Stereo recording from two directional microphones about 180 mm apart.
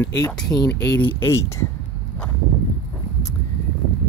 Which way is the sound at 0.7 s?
75° left (ahead or behind).